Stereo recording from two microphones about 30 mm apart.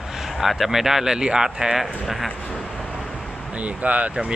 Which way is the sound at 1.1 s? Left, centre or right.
Right.